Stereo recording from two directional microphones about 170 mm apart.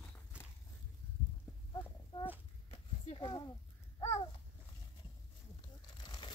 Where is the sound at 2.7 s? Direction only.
30° left (ahead or behind).